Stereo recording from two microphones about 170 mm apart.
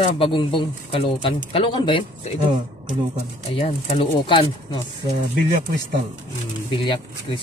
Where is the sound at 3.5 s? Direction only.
35° left (ahead or behind).